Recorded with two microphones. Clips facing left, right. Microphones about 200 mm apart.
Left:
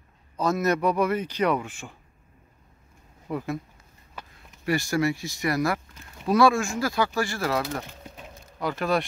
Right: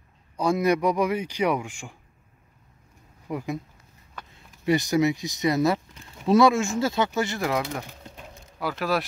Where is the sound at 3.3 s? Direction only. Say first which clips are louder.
Even; 15° right (ahead or behind).